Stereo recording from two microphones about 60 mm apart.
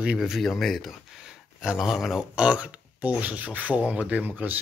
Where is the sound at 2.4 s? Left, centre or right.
Centre.